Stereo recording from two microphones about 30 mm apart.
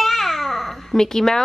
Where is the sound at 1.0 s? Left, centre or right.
Centre.